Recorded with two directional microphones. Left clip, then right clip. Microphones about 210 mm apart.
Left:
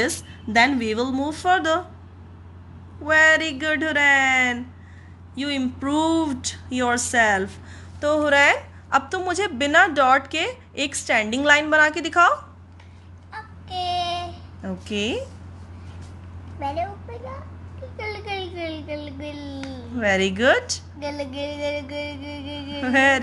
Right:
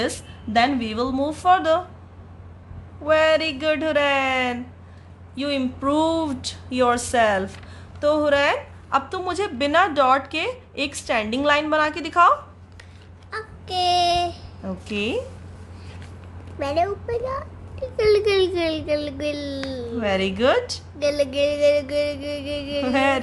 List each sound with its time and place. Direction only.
0.0 s a woman's voice: 5° left (ahead or behind)
3.1 s a woman's voice: centre (ahead or behind)
13.3 s child singing: 55° right (ahead or behind)
14.6 s a woman's voice: 5° left (ahead or behind)
16.5 s a child's voice: 50° right (ahead or behind)
20.0 s a woman's voice: 5° left (ahead or behind)
21.0 s music: 55° right (ahead or behind)
22.9 s a woman's voice: 5° left (ahead or behind)